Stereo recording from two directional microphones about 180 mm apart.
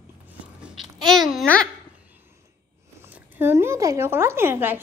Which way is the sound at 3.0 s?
10° right (ahead or behind).